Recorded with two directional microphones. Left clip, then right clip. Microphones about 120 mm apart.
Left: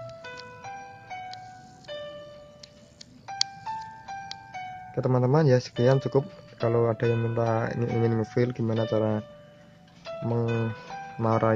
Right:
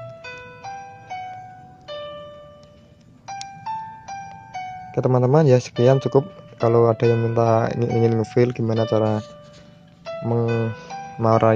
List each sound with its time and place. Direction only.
0.2 s music: 15° right (ahead or behind)
3.3 s music: 20° right (ahead or behind)
4.9 s speech: 45° right (ahead or behind)
7.1 s speech: 15° right (ahead or behind)
7.3 s speech: 40° right (ahead or behind)
10.2 s music: 25° right (ahead or behind)